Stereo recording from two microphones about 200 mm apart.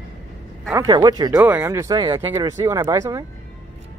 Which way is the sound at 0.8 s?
20° right (ahead or behind).